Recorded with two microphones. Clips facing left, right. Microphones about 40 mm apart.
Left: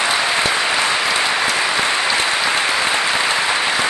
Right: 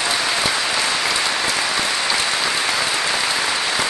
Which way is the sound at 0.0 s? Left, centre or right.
Centre.